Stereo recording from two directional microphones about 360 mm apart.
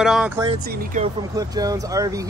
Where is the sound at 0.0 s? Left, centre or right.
Centre.